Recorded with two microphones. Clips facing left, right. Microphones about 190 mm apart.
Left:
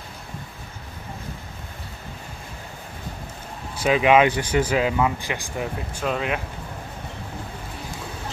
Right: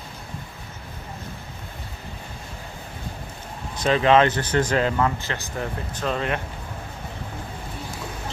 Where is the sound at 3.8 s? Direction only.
10° left (ahead or behind).